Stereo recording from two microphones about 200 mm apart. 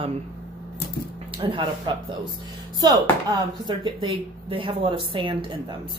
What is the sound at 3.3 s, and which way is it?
Speech, 20° right (ahead or behind).